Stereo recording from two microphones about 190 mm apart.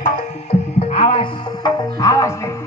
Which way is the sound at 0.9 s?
30° left (ahead or behind).